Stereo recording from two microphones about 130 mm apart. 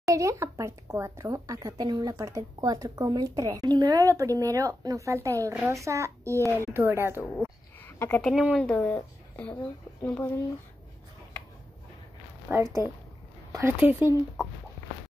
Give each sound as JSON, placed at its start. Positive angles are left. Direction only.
{"t": 0.0, "sound": "speech", "side_deg": -25}
{"t": 7.8, "sound": "a sound", "side_deg": 15}
{"t": 8.2, "sound": "speech", "side_deg": 5}
{"t": 8.7, "sound": "a woman's voice", "side_deg": 10}
{"t": 12.5, "sound": "speech", "side_deg": -15}